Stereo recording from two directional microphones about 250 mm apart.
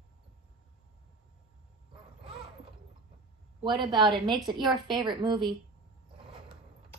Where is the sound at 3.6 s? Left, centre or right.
Centre.